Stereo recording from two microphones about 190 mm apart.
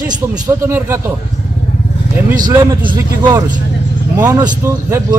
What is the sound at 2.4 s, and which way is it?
A man's voice, 20° right (ahead or behind).